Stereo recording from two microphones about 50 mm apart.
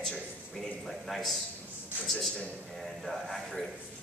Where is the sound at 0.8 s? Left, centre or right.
Centre.